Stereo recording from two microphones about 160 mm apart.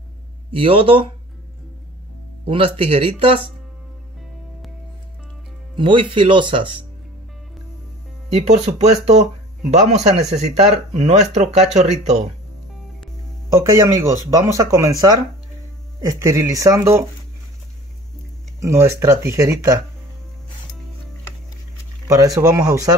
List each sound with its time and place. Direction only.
0.5 s speech: 35° right (ahead or behind)
2.4 s speech: 35° right (ahead or behind)
5.8 s speech: 30° right (ahead or behind)
8.3 s speech: 45° right (ahead or behind)
13.5 s speech: 20° right (ahead or behind)
18.6 s speech: 15° right (ahead or behind)
22.0 s speech: 20° right (ahead or behind)